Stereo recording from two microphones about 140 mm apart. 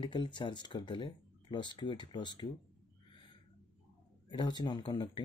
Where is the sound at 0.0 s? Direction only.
35° left (ahead or behind).